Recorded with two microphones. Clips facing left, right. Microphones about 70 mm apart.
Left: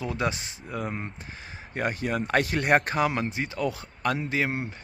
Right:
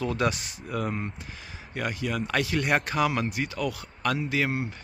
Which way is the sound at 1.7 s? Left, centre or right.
Left.